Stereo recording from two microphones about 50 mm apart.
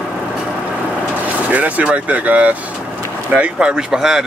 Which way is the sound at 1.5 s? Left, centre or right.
Right.